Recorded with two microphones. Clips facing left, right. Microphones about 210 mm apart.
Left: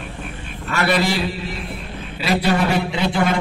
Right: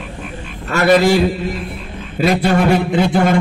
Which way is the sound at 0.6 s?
45° right (ahead or behind).